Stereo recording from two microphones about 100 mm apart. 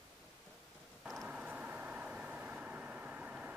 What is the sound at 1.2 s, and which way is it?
Vehicle, 15° right (ahead or behind).